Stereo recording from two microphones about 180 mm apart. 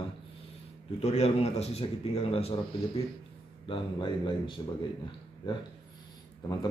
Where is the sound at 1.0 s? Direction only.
35° left (ahead or behind).